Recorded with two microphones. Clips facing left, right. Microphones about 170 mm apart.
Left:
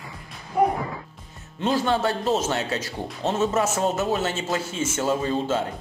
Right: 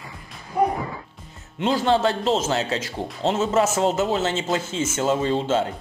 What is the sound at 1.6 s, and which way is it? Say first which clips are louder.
Speech: right 3 dB; 25° right (ahead or behind).